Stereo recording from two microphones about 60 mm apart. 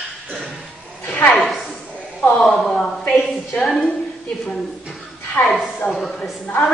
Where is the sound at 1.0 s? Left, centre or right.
Left.